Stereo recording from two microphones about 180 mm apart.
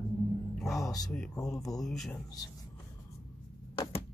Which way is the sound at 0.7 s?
20° left (ahead or behind).